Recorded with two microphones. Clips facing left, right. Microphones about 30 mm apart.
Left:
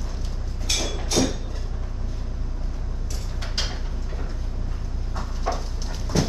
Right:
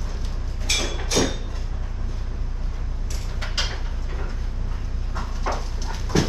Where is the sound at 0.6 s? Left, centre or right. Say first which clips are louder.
Right 2 dB; right.